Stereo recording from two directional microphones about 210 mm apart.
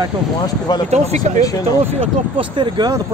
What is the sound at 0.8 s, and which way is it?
Speech, 35° right (ahead or behind).